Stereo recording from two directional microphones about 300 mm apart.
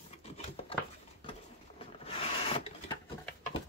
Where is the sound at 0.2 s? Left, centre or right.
Centre.